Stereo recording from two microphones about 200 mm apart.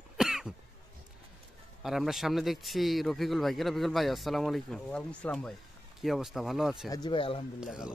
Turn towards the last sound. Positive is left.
turn(degrees=-5)  # may be behind; listen again after turning